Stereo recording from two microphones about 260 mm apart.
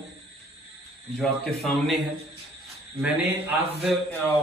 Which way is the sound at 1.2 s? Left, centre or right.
Centre.